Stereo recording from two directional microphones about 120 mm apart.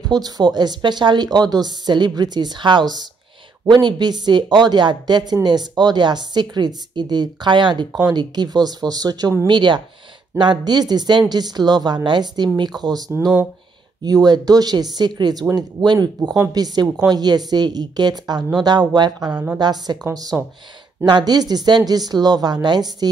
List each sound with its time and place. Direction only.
0.1 s a woman's voice: 35° right (ahead or behind)
14.0 s a woman's voice: 35° right (ahead or behind)
19.3 s a woman's voice: 10° right (ahead or behind)
19.6 s a woman's voice: 35° right (ahead or behind)